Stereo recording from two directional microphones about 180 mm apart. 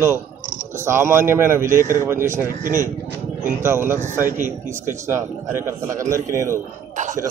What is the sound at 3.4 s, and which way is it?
Speech, 15° right (ahead or behind).